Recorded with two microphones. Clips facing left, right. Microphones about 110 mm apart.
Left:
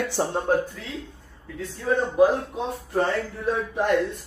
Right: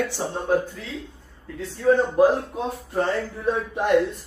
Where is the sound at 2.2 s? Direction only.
Centre (ahead or behind).